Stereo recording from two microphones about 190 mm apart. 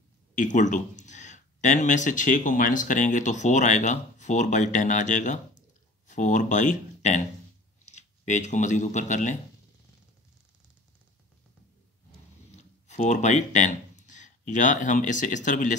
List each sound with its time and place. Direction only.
0.4 s speech: 40° left (ahead or behind)
12.4 s speech: 35° left (ahead or behind)